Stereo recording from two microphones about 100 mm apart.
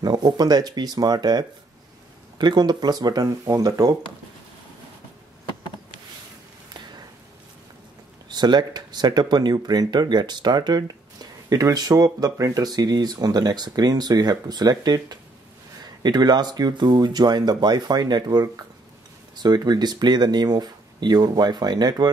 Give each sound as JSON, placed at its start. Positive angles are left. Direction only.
{"t": 0.0, "sound": "speech", "side_deg": -45}
{"t": 8.3, "sound": "speech", "side_deg": -45}